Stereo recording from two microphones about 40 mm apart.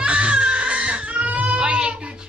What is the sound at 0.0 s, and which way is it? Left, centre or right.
Baby cry, right.